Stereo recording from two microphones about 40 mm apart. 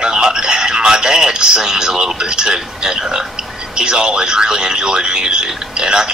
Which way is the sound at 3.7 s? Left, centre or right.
Right.